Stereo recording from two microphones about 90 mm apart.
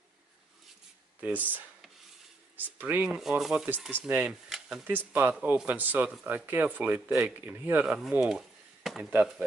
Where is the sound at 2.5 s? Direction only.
20° right (ahead or behind).